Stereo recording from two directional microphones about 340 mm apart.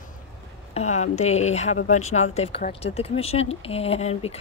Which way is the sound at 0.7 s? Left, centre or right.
Centre.